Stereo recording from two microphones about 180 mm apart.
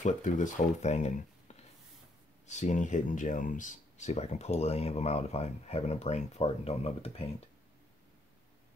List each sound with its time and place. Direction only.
0.0 s speech: 45° left (ahead or behind)